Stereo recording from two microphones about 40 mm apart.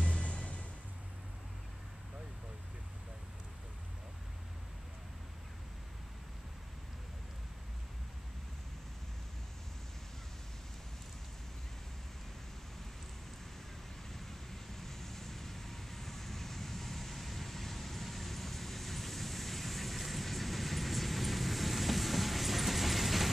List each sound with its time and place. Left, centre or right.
0.0 s music: left
14.1 s vehicle: centre